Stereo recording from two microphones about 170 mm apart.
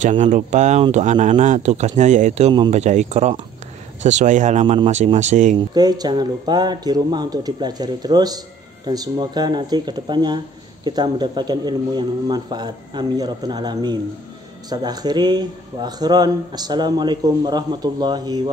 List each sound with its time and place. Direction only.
0.0 s speech: 45° right (ahead or behind)
5.8 s speech: 25° right (ahead or behind)